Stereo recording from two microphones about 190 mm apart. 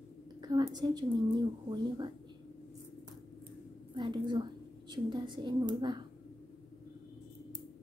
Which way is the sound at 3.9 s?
25° right (ahead or behind).